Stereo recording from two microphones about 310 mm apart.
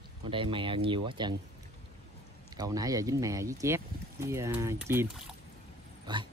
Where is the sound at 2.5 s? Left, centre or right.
Centre.